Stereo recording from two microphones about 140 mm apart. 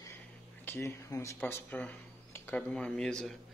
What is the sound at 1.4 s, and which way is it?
Speech, 10° left (ahead or behind).